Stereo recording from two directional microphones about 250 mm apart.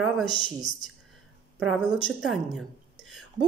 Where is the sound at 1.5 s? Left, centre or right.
Centre.